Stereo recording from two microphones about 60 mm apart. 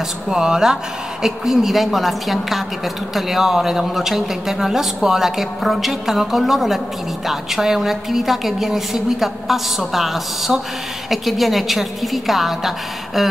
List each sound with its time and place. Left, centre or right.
0.3 s speech: centre